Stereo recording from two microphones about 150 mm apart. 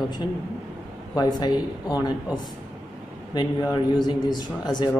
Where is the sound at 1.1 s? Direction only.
25° left (ahead or behind).